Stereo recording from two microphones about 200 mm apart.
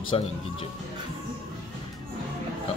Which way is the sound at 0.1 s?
25° left (ahead or behind).